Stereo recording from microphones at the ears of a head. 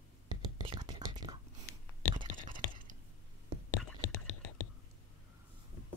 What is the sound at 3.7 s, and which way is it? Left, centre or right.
Whispering, left.